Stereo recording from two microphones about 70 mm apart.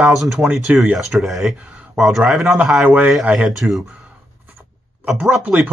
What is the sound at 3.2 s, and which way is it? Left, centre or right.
Speech, right.